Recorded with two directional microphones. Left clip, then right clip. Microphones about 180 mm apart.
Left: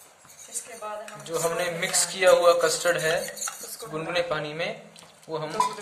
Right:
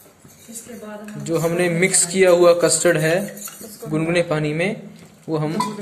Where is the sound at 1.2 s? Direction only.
20° right (ahead or behind).